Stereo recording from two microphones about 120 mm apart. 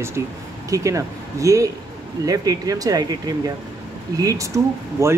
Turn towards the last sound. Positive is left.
turn(degrees=-25)  # may be behind; listen again after turning